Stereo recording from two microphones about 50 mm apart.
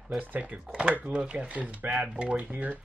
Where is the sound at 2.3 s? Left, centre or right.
Right.